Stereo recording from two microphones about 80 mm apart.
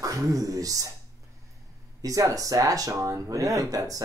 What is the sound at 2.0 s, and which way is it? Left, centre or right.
Speech, right.